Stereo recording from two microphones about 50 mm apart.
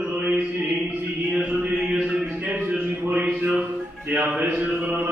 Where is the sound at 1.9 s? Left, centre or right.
Right.